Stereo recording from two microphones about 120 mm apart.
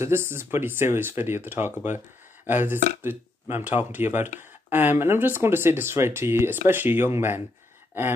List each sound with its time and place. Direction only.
0.0 s speech: 20° right (ahead or behind)